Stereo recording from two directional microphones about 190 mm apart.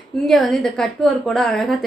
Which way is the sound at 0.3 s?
Centre (ahead or behind).